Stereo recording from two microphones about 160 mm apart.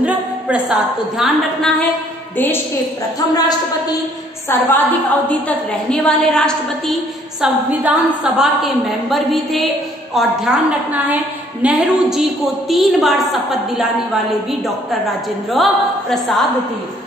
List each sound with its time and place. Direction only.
0.0 s a woman's voice: 10° right (ahead or behind)
2.3 s a woman's voice: 10° left (ahead or behind)
3.2 s a woman's voice: 25° left (ahead or behind)
4.5 s a woman's voice: 10° left (ahead or behind)
7.4 s a woman's voice: 5° right (ahead or behind)